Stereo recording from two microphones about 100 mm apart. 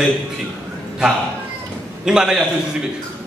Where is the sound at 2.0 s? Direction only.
5° right (ahead or behind).